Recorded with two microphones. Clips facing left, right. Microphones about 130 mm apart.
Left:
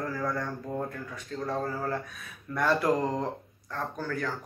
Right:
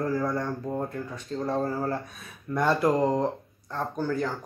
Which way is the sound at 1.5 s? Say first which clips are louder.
Right 3 dB; 30° right (ahead or behind).